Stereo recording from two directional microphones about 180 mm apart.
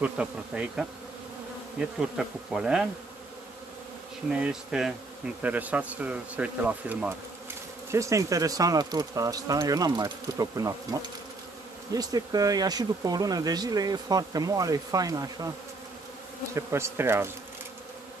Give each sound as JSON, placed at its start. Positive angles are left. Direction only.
{"t": 0.0, "sound": "speech", "side_deg": -5}
{"t": 1.8, "sound": "bee", "side_deg": -5}
{"t": 4.3, "sound": "speech", "side_deg": -5}
{"t": 16.5, "sound": "speech", "side_deg": -15}